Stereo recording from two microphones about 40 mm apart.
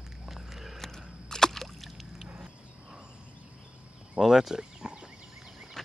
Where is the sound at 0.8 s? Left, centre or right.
Centre.